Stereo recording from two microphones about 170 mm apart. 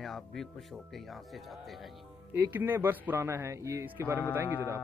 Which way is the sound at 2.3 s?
15° right (ahead or behind).